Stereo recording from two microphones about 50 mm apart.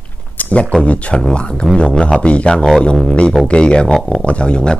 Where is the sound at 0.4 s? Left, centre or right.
Left.